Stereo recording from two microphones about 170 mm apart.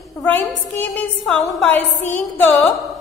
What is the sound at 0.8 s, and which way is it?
A woman's voice, 5° left (ahead or behind).